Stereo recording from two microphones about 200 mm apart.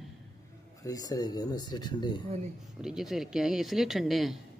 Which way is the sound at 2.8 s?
Centre (ahead or behind).